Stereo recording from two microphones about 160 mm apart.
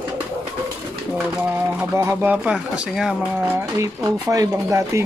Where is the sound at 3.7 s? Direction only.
20° right (ahead or behind).